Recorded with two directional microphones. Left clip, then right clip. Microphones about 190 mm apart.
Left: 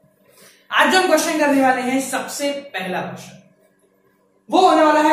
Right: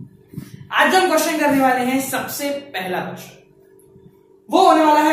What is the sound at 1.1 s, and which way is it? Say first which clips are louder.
Speech: left 1 dB; 10° left (ahead or behind).